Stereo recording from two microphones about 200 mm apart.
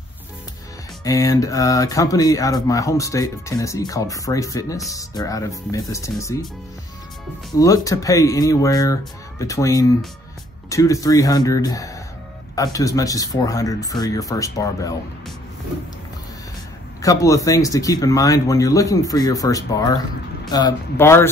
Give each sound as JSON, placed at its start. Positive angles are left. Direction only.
{"t": 1.0, "sound": "speech", "side_deg": 15}
{"t": 7.5, "sound": "speech", "side_deg": 15}
{"t": 17.0, "sound": "speech", "side_deg": 15}